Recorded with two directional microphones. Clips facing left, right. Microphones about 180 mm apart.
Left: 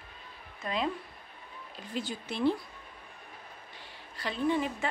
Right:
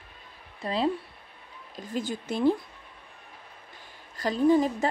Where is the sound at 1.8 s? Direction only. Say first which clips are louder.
Right 5 dB; 45° right (ahead or behind).